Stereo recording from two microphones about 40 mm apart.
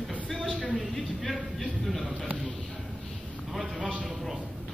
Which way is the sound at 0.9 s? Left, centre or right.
Centre.